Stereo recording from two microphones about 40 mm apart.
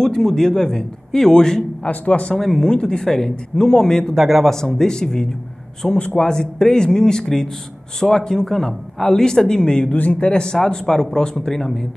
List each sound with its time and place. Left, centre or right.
0.0 s speech: centre
1.9 s speech: left
2.3 s speech: centre
4.2 s a man's voice: centre
4.6 s speech: centre
5.9 s a man's voice: left
6.3 s speech: centre